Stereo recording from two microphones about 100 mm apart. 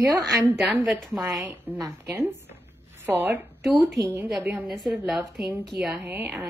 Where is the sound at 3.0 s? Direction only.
30° right (ahead or behind).